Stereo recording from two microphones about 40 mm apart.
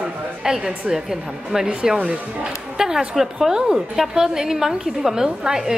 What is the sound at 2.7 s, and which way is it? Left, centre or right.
A woman's voice, centre.